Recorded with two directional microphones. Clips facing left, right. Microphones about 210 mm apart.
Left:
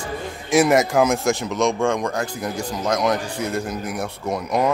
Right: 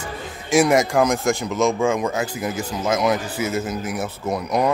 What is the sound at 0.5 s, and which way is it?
Speech, centre (ahead or behind).